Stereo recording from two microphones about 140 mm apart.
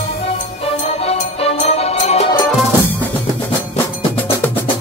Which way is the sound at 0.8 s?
45° left (ahead or behind).